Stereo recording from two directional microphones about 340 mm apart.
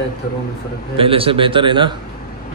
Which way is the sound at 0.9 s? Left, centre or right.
Centre.